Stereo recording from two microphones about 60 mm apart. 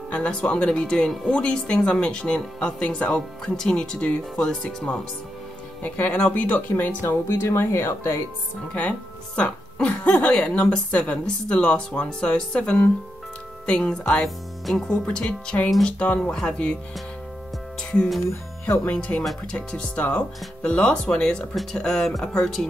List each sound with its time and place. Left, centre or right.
0.1 s speech: centre
5.8 s speech: left
6.7 s speech: left
7.2 s speech: left
8.7 s speech: left
18.9 s speech: left